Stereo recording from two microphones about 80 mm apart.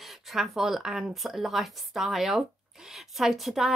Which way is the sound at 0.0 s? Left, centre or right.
Centre.